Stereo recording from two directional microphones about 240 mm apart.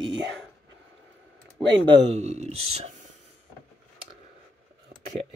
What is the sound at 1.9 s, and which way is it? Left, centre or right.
Speech, right.